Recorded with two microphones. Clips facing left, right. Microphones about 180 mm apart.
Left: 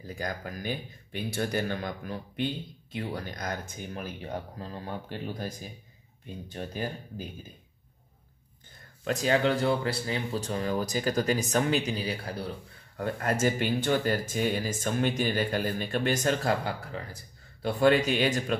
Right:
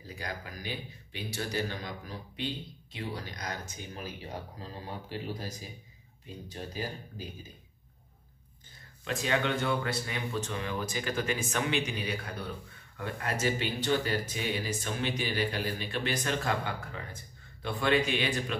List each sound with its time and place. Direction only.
0.1 s speech: 50° left (ahead or behind)
9.0 s speech: 40° left (ahead or behind)
12.9 s speech: 45° left (ahead or behind)